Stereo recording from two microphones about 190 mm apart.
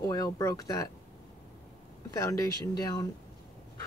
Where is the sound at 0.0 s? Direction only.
20° left (ahead or behind).